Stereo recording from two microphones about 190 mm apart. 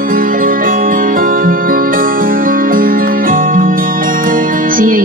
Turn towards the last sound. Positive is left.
turn(degrees=-45)  # may be behind; listen again after turning